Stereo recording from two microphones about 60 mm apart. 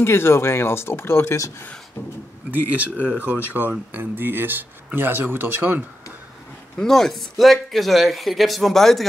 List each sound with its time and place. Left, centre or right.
0.0 s speech: left
2.5 s speech: right
6.8 s speech: centre